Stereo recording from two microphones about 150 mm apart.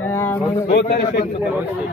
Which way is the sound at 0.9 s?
90° left.